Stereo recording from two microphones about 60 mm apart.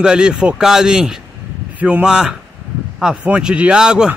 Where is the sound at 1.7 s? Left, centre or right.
Right.